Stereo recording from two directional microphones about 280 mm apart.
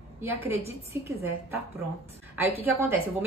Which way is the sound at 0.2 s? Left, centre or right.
Centre.